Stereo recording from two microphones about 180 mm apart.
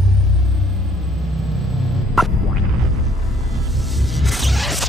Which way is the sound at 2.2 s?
Centre (ahead or behind).